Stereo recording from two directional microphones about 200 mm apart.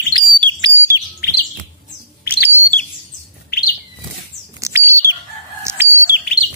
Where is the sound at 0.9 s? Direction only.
15° right (ahead or behind).